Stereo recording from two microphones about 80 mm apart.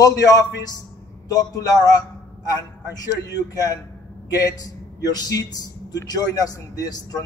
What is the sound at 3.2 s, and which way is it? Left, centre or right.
A man's voice, left.